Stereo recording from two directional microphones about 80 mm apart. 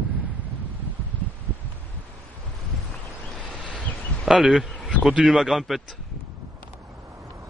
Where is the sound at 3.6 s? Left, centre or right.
Centre.